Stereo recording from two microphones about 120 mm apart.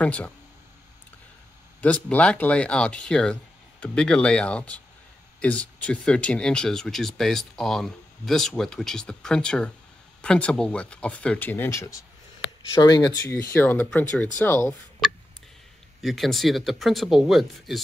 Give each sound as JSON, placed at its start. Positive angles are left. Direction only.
{"t": 0.0, "sound": "speech", "side_deg": 10}
{"t": 1.8, "sound": "speech", "side_deg": 10}
{"t": 16.0, "sound": "speech", "side_deg": 0}